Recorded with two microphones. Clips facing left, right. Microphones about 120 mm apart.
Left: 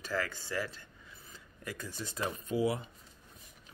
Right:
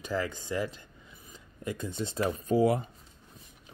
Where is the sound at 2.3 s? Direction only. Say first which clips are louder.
Right 6 dB; 35° right (ahead or behind).